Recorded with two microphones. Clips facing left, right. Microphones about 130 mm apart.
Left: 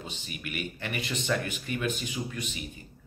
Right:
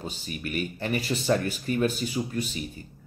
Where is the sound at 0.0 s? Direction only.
40° right (ahead or behind).